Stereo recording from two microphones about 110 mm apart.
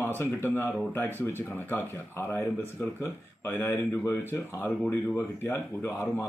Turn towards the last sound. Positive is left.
turn(degrees=20)  # may be behind; listen again after turning